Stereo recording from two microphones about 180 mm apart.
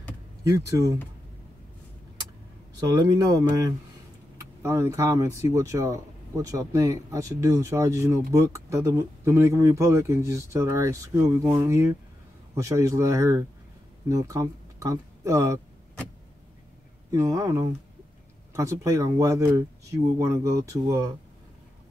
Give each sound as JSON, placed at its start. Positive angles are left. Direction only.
{"t": 0.4, "sound": "speech", "side_deg": -20}
{"t": 2.8, "sound": "speech", "side_deg": -20}
{"t": 17.1, "sound": "speech", "side_deg": -20}